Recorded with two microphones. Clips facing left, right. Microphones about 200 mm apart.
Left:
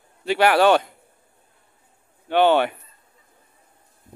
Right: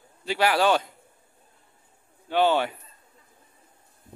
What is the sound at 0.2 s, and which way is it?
Speech, 60° left (ahead or behind).